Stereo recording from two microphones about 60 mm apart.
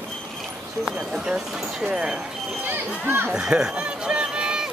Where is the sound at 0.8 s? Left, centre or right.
Centre.